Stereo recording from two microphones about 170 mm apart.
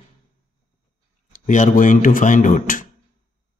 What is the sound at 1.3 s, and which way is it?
Speech, 45° left (ahead or behind).